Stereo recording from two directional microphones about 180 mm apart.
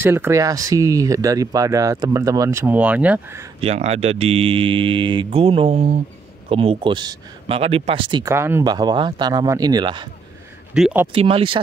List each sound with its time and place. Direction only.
0.0 s speech: 15° right (ahead or behind)
3.6 s speech: 35° right (ahead or behind)
8.3 s speech: 15° right (ahead or behind)
10.7 s speech: 5° right (ahead or behind)
11.1 s speech: 30° right (ahead or behind)